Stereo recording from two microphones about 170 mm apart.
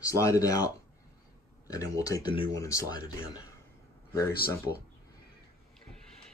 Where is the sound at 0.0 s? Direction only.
20° left (ahead or behind).